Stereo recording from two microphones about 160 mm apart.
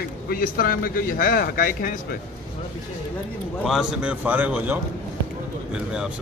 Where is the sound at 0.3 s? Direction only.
65° left (ahead or behind).